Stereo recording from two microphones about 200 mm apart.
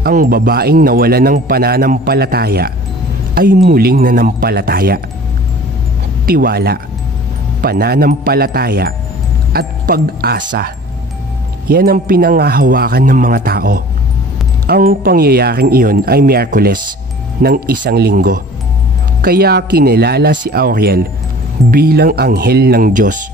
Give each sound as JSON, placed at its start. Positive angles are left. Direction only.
{"t": 0.0, "sound": "speech", "side_deg": -45}
{"t": 6.2, "sound": "speech", "side_deg": -50}